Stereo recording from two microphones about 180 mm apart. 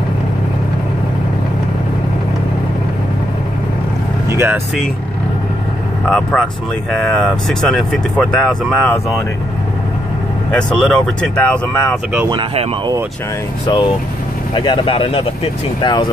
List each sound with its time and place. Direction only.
4.3 s vehicle: 15° right (ahead or behind)
6.0 s speech: 5° left (ahead or behind)
10.5 s speech: 5° left (ahead or behind)
11.7 s speech: 15° left (ahead or behind)
12.3 s speech: 25° right (ahead or behind)
13.7 s speech: 30° left (ahead or behind)